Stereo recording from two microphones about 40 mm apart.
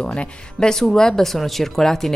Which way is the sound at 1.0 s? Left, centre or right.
Centre.